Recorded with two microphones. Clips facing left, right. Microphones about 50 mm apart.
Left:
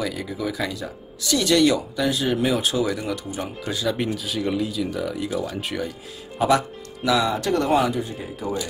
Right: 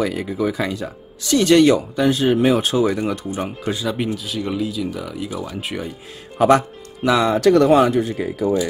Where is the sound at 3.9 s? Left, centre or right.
Centre.